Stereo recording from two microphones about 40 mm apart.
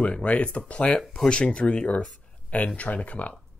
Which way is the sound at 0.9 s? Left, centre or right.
Centre.